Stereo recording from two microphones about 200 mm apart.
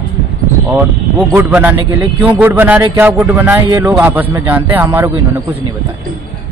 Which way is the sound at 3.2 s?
10° right (ahead or behind).